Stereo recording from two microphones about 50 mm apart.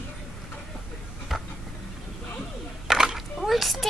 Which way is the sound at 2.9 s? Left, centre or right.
Centre.